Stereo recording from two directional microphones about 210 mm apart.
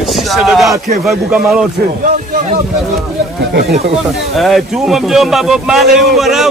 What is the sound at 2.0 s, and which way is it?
Speech, 40° right (ahead or behind).